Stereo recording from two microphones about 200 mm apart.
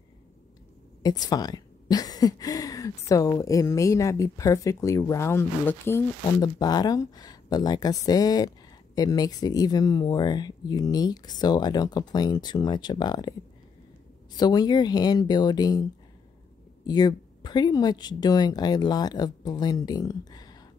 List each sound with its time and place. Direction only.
1.0 s a woman's voice: 20° left (ahead or behind)
14.3 s speech: 20° left (ahead or behind)
16.8 s speech: 20° left (ahead or behind)